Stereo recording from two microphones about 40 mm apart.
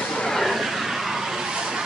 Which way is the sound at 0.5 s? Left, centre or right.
Centre.